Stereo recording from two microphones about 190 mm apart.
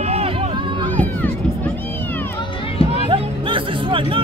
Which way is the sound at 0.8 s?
10° left (ahead or behind).